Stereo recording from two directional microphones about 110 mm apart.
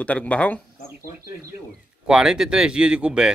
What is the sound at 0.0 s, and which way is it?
Speech, 10° left (ahead or behind).